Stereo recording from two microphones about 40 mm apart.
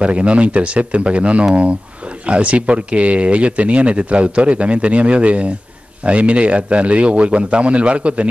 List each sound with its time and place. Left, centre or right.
0.0 s speech: right